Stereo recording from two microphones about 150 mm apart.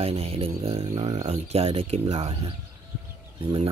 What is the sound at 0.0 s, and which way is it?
Speech, 40° right (ahead or behind).